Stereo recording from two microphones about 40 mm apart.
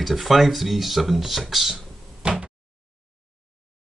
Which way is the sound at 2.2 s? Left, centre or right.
Right.